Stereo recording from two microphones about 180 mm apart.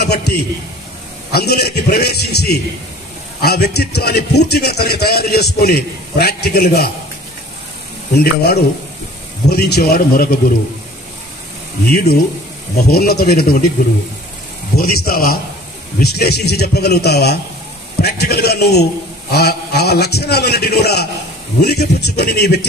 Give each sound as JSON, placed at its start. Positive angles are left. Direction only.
{"t": 0.0, "sound": "a man's voice", "side_deg": 65}
{"t": 8.2, "sound": "a man's voice", "side_deg": 65}
{"t": 11.9, "sound": "a man's voice", "side_deg": 60}
{"t": 14.8, "sound": "a man's voice", "side_deg": 55}